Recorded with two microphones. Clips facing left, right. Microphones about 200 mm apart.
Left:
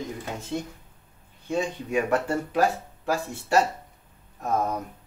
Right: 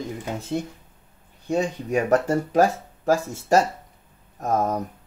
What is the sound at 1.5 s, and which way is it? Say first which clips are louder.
Speech: right 3 dB; 40° right (ahead or behind).